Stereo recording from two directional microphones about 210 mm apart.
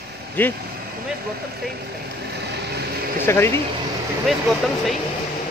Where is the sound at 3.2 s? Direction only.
10° left (ahead or behind).